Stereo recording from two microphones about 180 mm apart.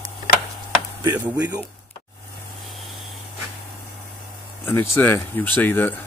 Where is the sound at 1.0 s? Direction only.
15° right (ahead or behind).